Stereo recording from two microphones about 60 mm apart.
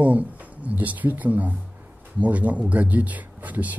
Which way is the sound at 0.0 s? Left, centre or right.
Right.